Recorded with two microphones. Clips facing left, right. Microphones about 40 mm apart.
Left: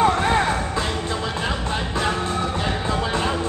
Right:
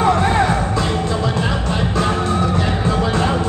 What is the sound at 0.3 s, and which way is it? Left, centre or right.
Music, right.